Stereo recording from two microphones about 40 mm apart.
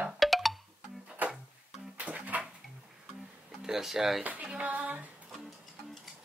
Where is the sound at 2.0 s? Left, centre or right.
Right.